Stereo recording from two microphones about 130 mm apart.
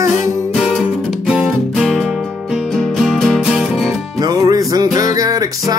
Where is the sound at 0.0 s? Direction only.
25° right (ahead or behind).